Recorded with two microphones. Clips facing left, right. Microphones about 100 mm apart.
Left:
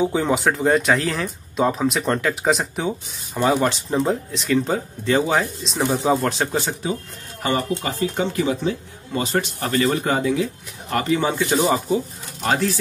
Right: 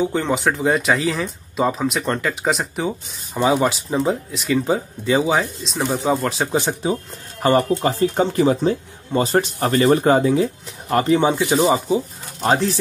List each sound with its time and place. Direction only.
0.0 s speech: 5° left (ahead or behind)
6.5 s speech: 25° right (ahead or behind)
7.4 s speech: 40° right (ahead or behind); by 12.0 s 10° right (ahead or behind)